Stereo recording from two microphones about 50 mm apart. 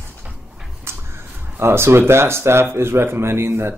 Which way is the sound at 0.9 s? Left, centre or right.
Right.